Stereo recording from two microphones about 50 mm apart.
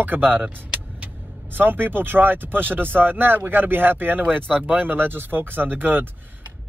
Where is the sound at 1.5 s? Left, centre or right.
Right.